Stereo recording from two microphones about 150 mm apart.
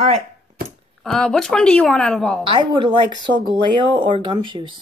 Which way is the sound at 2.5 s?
30° right (ahead or behind).